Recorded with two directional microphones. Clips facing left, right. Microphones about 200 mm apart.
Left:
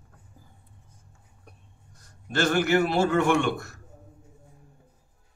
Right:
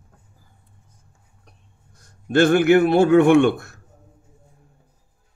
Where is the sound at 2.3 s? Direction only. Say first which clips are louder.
Right 8 dB; 55° right (ahead or behind).